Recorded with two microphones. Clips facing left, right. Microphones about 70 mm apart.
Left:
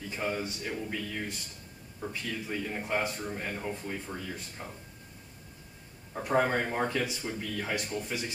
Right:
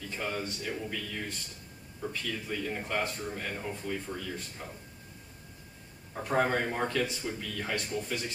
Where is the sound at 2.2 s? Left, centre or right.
Left.